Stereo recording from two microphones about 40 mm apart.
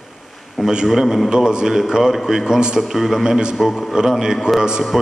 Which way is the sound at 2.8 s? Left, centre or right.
Centre.